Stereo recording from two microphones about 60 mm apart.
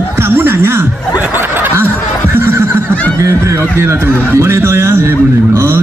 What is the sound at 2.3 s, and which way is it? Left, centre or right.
Neigh, right.